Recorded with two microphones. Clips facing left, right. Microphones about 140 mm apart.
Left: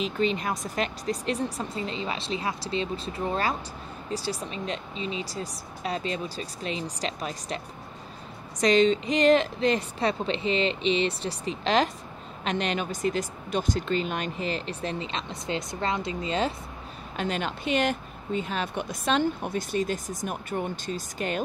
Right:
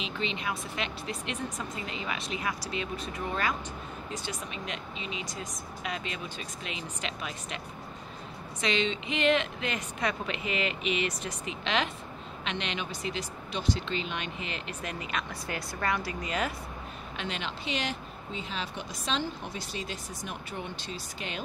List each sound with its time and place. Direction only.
0.0 s speech: 40° left (ahead or behind)
17.2 s speech: 45° left (ahead or behind)